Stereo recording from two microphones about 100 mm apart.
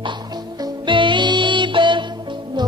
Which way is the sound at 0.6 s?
55° right (ahead or behind).